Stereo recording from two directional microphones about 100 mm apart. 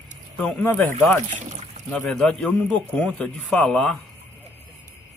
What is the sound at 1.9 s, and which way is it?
A man's voice, 10° left (ahead or behind).